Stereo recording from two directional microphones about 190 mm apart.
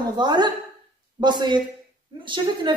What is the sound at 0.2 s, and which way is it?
A woman's voice, 20° right (ahead or behind).